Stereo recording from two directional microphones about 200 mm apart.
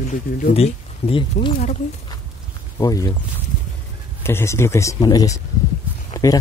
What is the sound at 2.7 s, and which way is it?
Speech, 15° left (ahead or behind).